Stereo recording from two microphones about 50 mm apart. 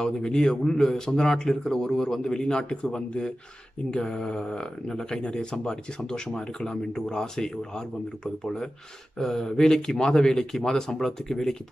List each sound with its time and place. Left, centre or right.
0.0 s a man's voice: centre
9.2 s speech: centre